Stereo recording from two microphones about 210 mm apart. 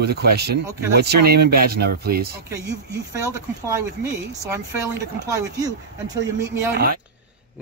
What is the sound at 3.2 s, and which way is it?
Speech, 15° right (ahead or behind).